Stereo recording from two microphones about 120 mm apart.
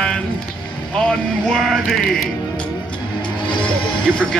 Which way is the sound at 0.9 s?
5° left (ahead or behind).